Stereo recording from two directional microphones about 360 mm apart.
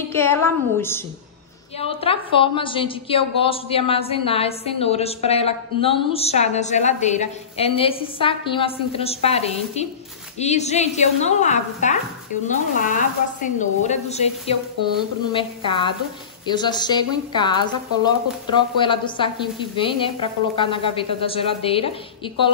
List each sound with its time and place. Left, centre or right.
0.1 s a woman's voice: centre